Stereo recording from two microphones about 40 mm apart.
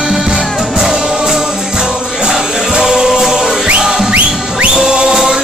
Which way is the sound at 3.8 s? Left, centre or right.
Centre.